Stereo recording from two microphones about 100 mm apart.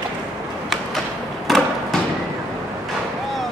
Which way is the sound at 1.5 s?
Centre (ahead or behind).